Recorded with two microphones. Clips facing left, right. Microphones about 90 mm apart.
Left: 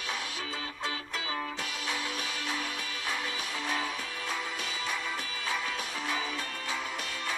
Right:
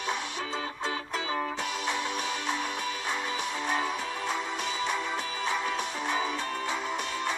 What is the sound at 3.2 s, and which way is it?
Music, 25° right (ahead or behind).